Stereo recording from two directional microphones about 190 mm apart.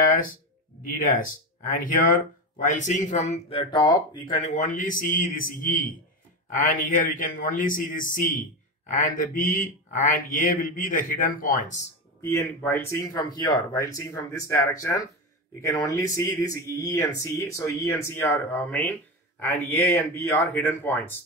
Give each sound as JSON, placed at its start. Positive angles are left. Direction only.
{"t": 1.8, "sound": "a man's voice", "side_deg": 45}
{"t": 12.2, "sound": "speech", "side_deg": 15}